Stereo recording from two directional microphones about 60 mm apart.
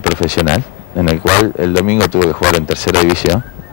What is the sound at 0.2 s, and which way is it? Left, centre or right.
Speech, centre.